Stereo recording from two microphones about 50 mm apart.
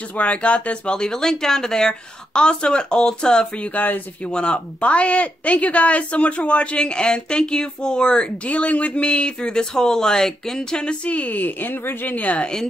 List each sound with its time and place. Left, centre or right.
0.2 s speech: left
3.7 s speech: left
4.3 s speech: centre
8.5 s speech: left